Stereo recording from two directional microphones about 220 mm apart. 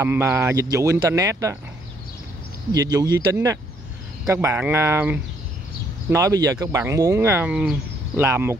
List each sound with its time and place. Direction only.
0.0 s speech: 10° right (ahead or behind)
2.7 s speech: 15° right (ahead or behind)